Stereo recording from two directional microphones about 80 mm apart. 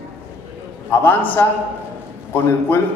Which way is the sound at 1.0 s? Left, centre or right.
Left.